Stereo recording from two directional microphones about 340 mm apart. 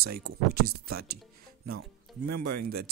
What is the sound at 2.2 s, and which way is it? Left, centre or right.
Speech, right.